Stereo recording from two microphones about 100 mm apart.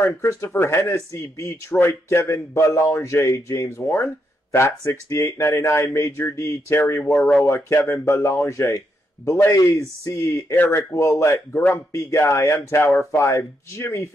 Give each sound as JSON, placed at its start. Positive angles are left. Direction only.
{"t": 0.0, "sound": "speech", "side_deg": 30}
{"t": 7.2, "sound": "speech", "side_deg": 5}
{"t": 7.4, "sound": "speech", "side_deg": 25}